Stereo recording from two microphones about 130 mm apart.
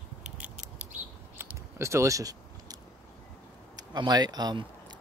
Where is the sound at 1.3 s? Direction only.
20° right (ahead or behind).